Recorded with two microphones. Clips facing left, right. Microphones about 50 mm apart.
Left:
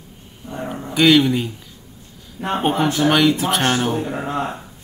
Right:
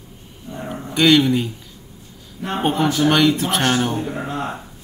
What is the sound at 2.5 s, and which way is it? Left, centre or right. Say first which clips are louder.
Speech: even; centre.